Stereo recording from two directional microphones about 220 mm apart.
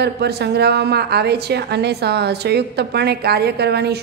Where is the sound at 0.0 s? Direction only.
50° right (ahead or behind).